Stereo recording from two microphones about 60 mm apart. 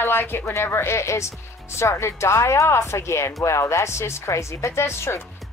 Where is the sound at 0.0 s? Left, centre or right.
Left.